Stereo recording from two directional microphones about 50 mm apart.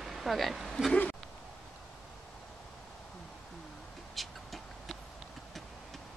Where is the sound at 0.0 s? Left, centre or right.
Centre.